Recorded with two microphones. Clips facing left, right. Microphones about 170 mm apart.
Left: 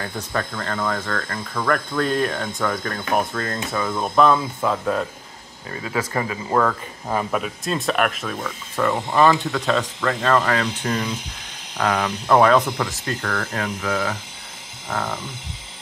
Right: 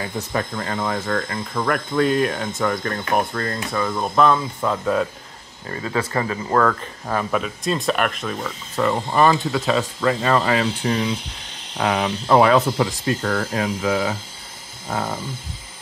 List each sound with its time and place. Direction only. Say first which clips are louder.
0.0 s speech: right 2 dB; 15° right (ahead or behind)
1.7 s speech: right 2 dB; 5° right (ahead or behind)
12.7 s speech: right 5 dB; 20° right (ahead or behind)